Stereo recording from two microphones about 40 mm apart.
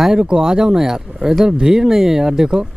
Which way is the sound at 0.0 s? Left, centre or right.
Centre.